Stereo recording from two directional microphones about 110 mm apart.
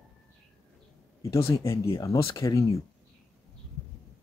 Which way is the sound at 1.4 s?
25° left (ahead or behind).